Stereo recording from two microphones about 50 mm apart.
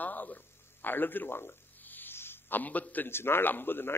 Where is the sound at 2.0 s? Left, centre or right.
Left.